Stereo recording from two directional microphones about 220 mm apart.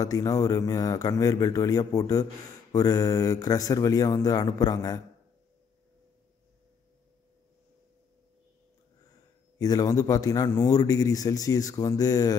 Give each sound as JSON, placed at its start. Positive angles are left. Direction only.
{"t": 0.0, "sound": "speech", "side_deg": 15}
{"t": 9.6, "sound": "speech", "side_deg": 15}